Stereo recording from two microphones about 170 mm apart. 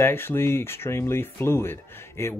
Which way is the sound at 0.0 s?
15° left (ahead or behind).